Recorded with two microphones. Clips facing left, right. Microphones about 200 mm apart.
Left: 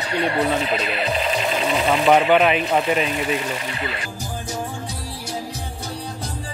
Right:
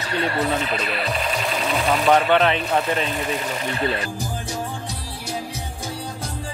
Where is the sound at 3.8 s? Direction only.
35° right (ahead or behind).